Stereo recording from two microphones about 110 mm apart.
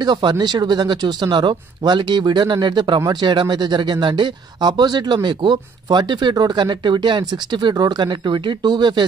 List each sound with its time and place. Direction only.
0.0 s speech: 40° right (ahead or behind)